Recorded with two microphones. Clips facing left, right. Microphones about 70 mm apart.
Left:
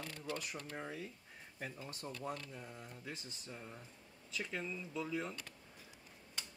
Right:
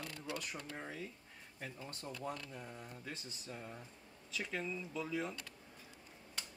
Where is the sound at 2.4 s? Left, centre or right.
Centre.